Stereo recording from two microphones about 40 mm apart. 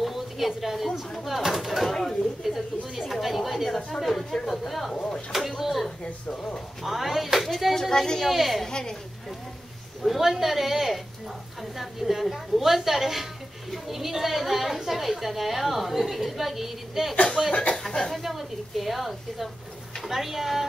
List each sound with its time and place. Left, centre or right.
0.0 s a woman's voice: centre
8.6 s speech: centre
10.0 s a woman's voice: centre
17.1 s speech: left
17.8 s speech: centre
18.2 s a woman's voice: centre